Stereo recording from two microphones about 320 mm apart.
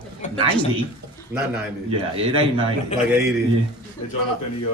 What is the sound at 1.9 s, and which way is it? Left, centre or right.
Speech, centre.